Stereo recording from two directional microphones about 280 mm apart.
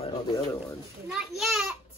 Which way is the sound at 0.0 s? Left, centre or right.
Centre.